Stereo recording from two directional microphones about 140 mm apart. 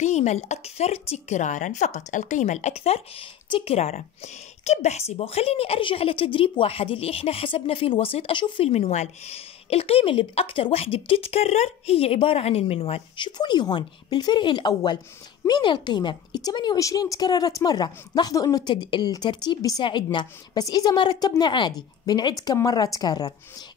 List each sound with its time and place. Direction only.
0.0 s a woman's voice: 55° left (ahead or behind)
13.4 s a woman's voice: 30° left (ahead or behind)